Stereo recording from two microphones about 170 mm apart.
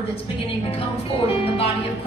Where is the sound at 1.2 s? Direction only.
35° left (ahead or behind).